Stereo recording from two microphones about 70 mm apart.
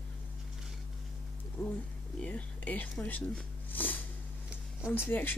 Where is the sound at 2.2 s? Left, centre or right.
Left.